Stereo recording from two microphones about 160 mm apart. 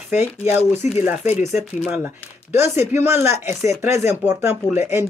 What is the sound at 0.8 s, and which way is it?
Speech, 45° left (ahead or behind).